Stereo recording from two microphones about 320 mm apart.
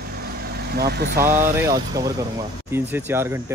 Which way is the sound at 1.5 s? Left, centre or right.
Centre.